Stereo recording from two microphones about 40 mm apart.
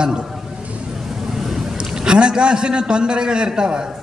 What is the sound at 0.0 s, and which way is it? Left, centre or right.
Speech, centre.